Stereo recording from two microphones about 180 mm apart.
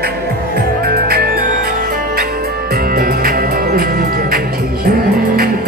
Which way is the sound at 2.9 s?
55° right (ahead or behind).